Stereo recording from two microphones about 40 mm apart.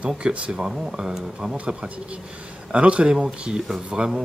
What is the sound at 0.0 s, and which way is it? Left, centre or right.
Speech, right.